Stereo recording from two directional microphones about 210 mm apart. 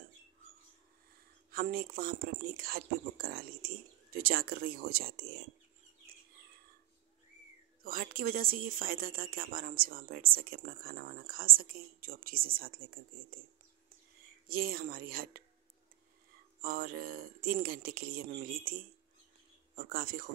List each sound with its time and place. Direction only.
1.5 s speech: 45° right (ahead or behind)
7.8 s speech: 45° right (ahead or behind)
14.5 s speech: 45° right (ahead or behind)
16.6 s speech: 45° right (ahead or behind)